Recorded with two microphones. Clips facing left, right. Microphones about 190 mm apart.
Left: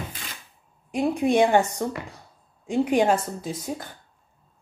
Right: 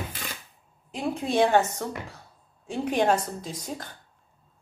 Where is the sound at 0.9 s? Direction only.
15° left (ahead or behind).